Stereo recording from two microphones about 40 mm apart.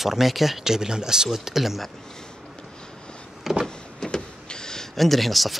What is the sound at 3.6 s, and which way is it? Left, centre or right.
Power windows, centre.